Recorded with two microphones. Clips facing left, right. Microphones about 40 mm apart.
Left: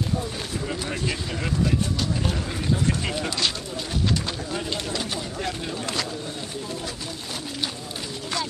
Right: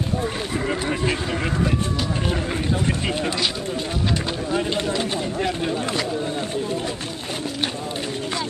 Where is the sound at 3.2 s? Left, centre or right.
Centre.